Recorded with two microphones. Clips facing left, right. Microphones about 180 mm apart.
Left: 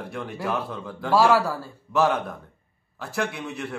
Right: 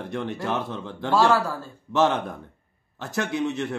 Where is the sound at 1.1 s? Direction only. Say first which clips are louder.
Left 1 dB; 10° left (ahead or behind).